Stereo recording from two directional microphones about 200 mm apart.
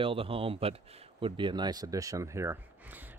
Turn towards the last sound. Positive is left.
turn(degrees=-10)  # may be behind; listen again after turning